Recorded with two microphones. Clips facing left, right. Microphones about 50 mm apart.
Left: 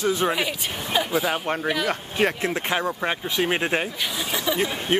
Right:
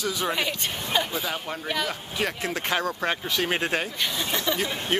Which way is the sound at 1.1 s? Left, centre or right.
Left.